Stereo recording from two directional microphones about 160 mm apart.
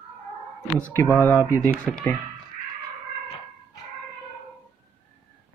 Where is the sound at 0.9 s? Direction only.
15° left (ahead or behind).